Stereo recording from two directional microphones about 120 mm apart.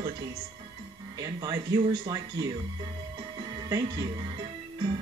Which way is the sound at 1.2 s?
30° right (ahead or behind).